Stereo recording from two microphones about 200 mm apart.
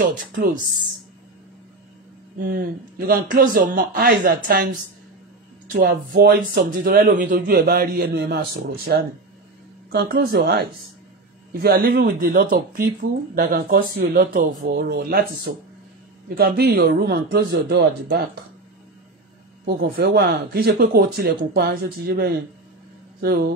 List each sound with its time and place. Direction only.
0.1 s speech: 45° right (ahead or behind)
2.3 s speech: 50° right (ahead or behind)
19.6 s speech: 50° right (ahead or behind)